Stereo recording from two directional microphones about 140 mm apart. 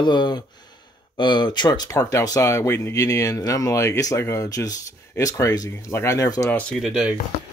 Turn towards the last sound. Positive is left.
turn(degrees=-5)  # may be behind; listen again after turning